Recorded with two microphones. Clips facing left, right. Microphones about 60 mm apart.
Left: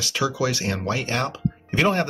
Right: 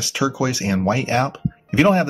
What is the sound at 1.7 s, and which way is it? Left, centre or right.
Speech, centre.